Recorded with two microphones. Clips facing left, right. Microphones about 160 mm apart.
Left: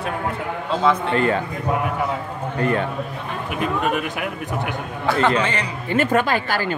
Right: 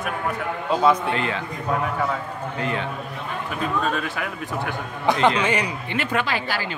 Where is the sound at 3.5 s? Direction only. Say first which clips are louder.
Left 3 dB; 15° left (ahead or behind).